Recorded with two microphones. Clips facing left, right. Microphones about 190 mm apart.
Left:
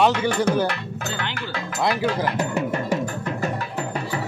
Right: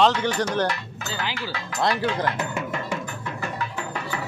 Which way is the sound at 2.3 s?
35° left (ahead or behind).